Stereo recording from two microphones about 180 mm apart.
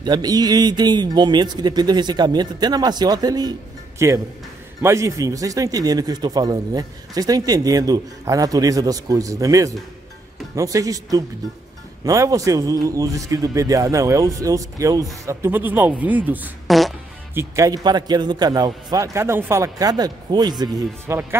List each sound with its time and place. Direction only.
0.0 s a man's voice: 20° right (ahead or behind); by 16.9 s centre (ahead or behind)
17.3 s a man's voice: 15° right (ahead or behind)